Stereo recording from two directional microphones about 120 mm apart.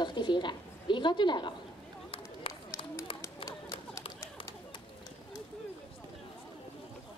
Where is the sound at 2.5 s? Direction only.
50° left (ahead or behind).